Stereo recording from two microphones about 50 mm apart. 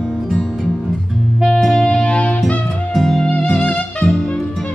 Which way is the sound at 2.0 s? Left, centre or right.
Left.